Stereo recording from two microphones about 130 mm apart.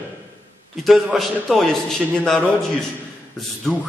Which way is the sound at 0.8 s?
Centre (ahead or behind).